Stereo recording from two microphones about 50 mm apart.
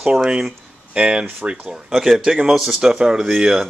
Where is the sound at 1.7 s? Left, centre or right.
Centre.